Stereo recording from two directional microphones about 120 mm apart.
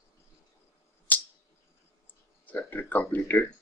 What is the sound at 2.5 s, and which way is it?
Speech, 15° left (ahead or behind).